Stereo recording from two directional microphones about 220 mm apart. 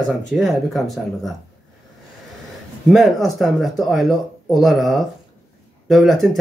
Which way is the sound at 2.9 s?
Centre (ahead or behind).